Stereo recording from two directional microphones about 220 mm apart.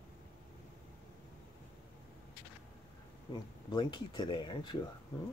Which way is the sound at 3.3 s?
20° left (ahead or behind).